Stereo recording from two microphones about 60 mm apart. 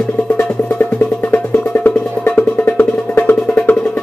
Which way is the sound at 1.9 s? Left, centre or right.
Left.